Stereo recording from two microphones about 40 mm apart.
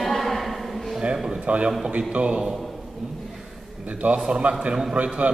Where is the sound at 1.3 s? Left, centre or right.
Right.